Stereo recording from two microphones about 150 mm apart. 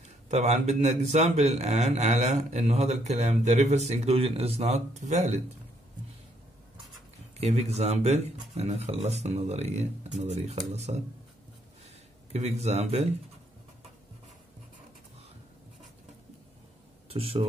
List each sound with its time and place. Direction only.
0.3 s a man's voice: 50° right (ahead or behind)
7.3 s a man's voice: 45° right (ahead or behind)
12.3 s a man's voice: 45° right (ahead or behind)
17.1 s speech: 40° right (ahead or behind)